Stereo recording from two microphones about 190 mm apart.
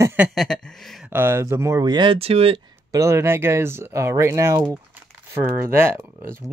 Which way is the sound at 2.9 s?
15° right (ahead or behind).